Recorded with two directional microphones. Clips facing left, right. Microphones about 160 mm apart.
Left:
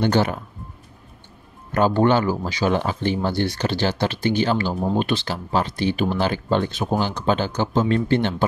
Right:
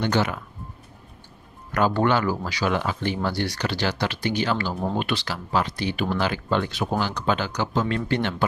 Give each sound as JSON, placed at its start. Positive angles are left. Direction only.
{"t": 0.0, "sound": "speech", "side_deg": 35}
{"t": 1.7, "sound": "speech", "side_deg": 25}